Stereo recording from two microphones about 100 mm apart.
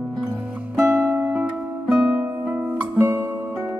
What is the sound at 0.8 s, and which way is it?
Music, 20° right (ahead or behind).